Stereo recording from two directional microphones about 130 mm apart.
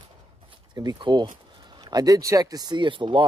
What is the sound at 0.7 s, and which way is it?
Speech, 30° right (ahead or behind).